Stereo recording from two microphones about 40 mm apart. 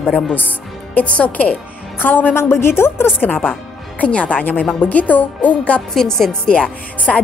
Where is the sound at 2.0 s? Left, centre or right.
Left.